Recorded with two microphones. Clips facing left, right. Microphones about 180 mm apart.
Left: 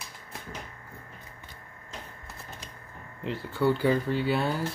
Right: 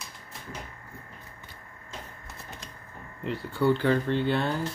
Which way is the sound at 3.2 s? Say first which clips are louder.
Even; centre (ahead or behind).